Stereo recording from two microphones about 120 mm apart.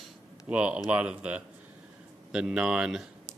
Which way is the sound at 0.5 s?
10° right (ahead or behind).